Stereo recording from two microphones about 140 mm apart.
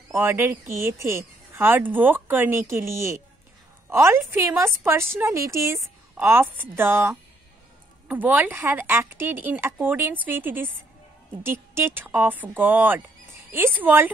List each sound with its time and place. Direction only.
0.1 s a woman's voice: 15° right (ahead or behind)